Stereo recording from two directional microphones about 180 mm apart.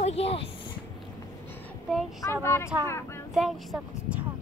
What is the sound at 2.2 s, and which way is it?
Speech, 15° left (ahead or behind).